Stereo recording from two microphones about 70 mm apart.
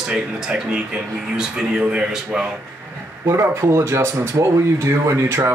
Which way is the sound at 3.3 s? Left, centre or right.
Right.